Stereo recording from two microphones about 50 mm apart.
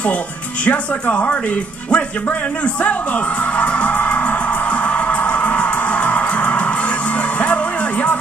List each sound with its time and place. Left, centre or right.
0.7 s speech: left
3.5 s music: left